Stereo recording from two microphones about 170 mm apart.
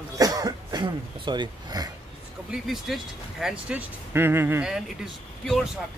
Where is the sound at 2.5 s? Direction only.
Centre (ahead or behind).